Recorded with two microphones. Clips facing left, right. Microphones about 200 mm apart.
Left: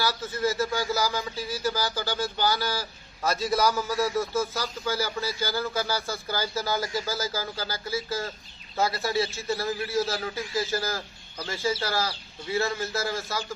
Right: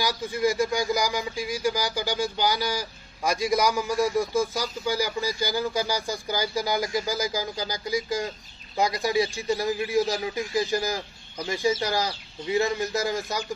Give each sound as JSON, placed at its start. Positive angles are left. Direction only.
{"t": 0.0, "sound": "speech", "side_deg": -15}